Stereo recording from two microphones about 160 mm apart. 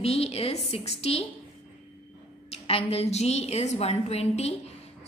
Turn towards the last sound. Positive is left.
turn(degrees=40)  # may be behind; listen again after turning